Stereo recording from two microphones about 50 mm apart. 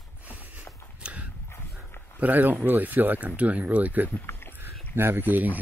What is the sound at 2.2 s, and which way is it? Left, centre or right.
Speech, right.